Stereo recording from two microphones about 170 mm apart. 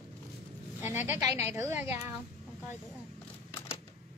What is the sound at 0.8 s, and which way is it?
A woman's voice, 15° right (ahead or behind).